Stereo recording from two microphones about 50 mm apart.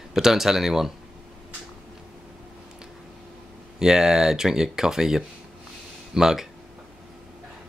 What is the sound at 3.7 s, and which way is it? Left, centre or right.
Speech, centre.